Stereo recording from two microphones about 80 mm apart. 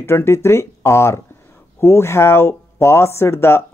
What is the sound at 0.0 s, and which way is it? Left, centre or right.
Speech, left.